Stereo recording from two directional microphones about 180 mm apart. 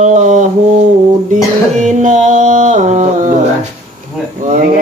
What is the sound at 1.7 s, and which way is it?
Music, 40° right (ahead or behind).